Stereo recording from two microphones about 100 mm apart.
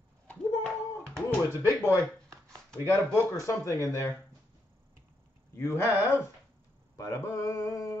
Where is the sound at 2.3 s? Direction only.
30° right (ahead or behind).